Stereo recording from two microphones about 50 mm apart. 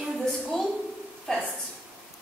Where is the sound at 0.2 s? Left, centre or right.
Centre.